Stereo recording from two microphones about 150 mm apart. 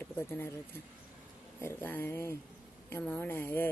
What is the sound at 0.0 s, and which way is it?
Speech, 15° left (ahead or behind).